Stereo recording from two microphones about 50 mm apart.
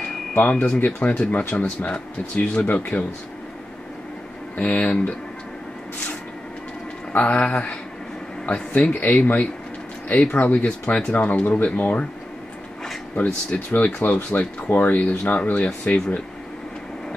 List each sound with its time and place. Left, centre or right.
0.3 s speech: left
1.0 s speech: left
4.6 s speech: left
7.1 s speech: left
8.7 s speech: left
13.1 s speech: left